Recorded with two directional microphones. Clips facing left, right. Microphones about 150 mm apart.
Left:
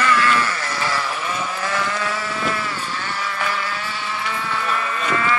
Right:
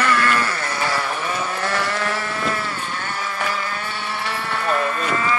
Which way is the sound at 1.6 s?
55° right (ahead or behind).